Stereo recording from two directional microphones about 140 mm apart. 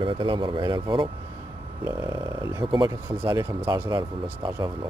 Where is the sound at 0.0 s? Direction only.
35° right (ahead or behind).